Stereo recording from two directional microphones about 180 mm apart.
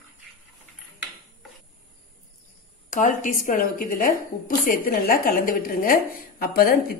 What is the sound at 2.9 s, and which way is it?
Speech, 45° left (ahead or behind).